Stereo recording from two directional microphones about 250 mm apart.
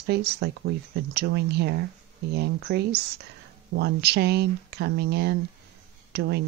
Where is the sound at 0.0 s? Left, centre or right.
Right.